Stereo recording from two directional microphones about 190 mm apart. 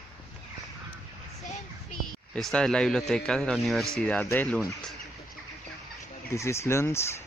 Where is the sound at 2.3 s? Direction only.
5° left (ahead or behind).